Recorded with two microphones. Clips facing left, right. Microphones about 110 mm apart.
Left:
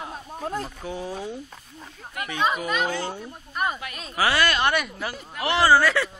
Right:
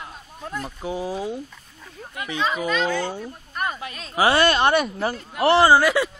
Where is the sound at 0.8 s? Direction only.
10° right (ahead or behind).